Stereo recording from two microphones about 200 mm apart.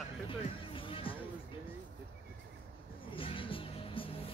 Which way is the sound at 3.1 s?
25° left (ahead or behind).